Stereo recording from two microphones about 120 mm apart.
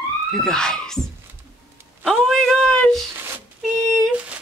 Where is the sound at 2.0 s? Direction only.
Centre (ahead or behind).